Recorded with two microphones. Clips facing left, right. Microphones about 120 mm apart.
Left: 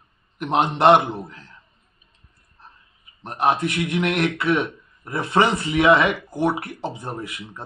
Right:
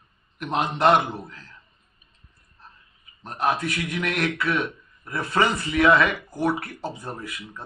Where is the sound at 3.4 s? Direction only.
25° left (ahead or behind).